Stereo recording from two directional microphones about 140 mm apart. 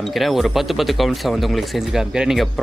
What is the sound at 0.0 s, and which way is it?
Speech, centre (ahead or behind).